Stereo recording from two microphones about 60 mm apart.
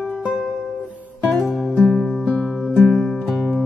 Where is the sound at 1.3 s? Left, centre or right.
Centre.